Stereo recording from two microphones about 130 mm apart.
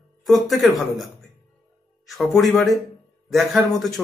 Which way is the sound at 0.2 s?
Centre (ahead or behind).